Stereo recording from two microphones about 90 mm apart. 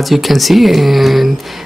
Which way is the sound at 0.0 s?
Centre (ahead or behind).